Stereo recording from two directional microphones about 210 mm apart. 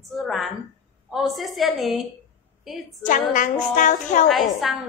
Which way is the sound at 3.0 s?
35° left (ahead or behind).